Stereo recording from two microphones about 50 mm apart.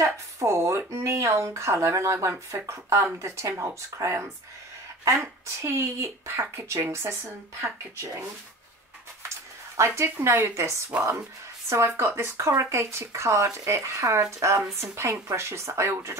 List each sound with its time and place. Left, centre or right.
0.0 s speech: right
7.6 s speech: right
9.8 s speech: right
10.0 s speech: right
10.5 s speech: right